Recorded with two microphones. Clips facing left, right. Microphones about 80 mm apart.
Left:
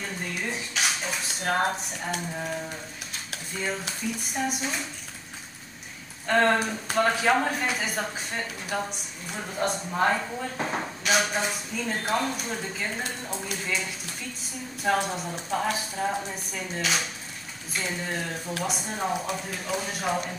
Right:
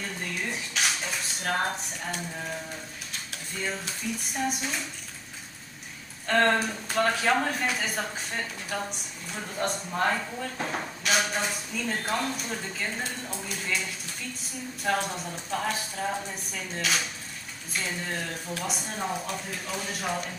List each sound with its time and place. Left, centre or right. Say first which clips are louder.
0.0 s a sound: left 1 dB; centre
1.4 s speech: left 3 dB; centre
4.4 s dishes: left 1 dB; centre
6.2 s speech: left 1 dB; centre
14.8 s speech: left 3 dB; centre